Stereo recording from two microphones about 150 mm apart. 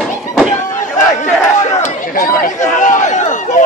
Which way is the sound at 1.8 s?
60° left (ahead or behind).